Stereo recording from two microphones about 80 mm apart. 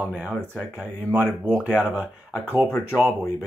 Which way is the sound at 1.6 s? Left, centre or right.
Centre.